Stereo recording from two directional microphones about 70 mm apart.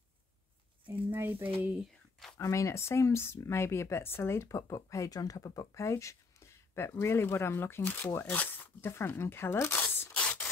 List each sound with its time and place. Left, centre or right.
1.1 s speech: right
2.3 s speech: left
9.8 s zipper: left
10.1 s rub: centre